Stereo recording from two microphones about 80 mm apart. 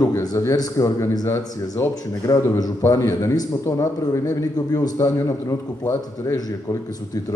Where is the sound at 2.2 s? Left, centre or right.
Left.